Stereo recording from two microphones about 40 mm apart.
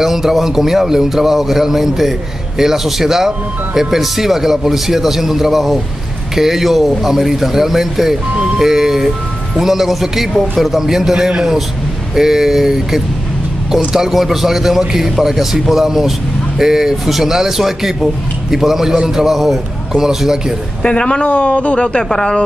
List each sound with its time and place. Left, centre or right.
0.0 s a man's voice: centre
20.8 s speech: left
21.5 s speech: left
21.7 s speech: left